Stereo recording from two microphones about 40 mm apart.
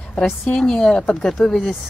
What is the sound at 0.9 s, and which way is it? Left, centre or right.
Speech, left.